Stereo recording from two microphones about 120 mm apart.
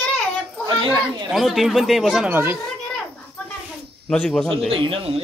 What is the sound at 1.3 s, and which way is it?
A woman's voice, centre (ahead or behind).